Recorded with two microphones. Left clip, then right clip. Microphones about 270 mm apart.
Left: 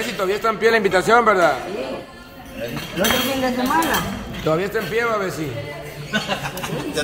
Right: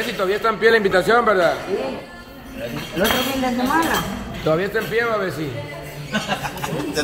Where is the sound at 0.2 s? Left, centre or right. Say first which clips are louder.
Right 1 dB; centre.